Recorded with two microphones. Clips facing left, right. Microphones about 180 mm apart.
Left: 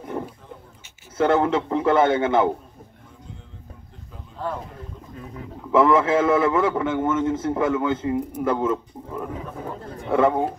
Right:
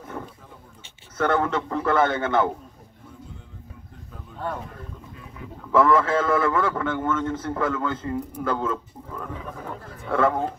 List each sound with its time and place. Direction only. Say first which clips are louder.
1.1 s speech: left 4 dB; 25° left (ahead or behind)
5.7 s speech: left 2 dB; 25° left (ahead or behind)
7.1 s a man's voice: left 3 dB; 10° left (ahead or behind)
7.3 s speech: left 4 dB; 25° left (ahead or behind)